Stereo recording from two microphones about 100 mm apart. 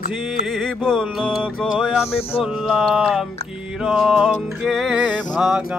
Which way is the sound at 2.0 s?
75° left (ahead or behind).